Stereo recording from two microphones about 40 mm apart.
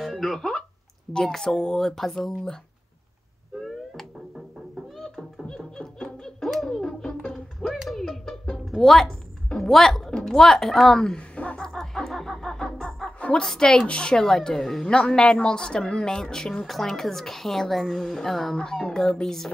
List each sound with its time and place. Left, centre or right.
0.0 s music: centre
1.1 s speech: centre
3.6 s music: centre
6.4 s music: centre
6.8 s music: centre
7.7 s a sound: centre
8.7 s speech: centre
11.3 s a sound: left
11.6 s music: centre
13.4 s speech: centre
14.2 s speech: centre
14.9 s speech: left
16.6 s a woman's voice: centre
18.6 s speech: left